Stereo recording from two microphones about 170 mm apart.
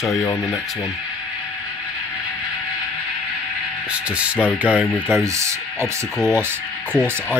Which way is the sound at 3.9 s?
5° right (ahead or behind).